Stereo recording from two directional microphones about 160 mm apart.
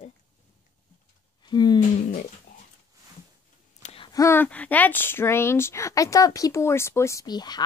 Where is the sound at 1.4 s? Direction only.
25° left (ahead or behind).